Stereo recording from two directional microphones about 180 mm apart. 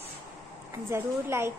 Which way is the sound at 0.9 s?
15° right (ahead or behind).